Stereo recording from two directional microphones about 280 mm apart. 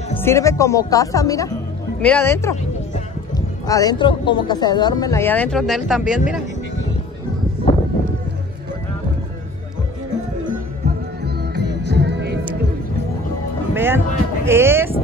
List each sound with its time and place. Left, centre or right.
0.2 s speech: centre
3.6 s speech: centre
11.2 s music: right
13.7 s speech: centre